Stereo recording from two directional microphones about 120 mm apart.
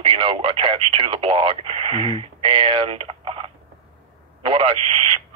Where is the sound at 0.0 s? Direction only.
50° right (ahead or behind).